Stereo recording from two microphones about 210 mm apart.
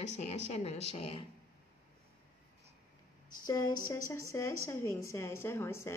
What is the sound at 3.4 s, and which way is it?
A woman's voice, 15° left (ahead or behind).